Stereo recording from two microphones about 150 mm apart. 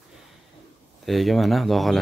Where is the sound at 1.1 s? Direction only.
Centre (ahead or behind).